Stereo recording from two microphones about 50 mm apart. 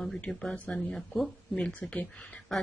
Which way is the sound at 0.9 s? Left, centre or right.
Centre.